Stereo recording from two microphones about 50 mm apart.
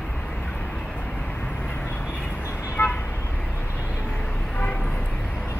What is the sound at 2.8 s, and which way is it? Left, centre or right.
Vehicle, left.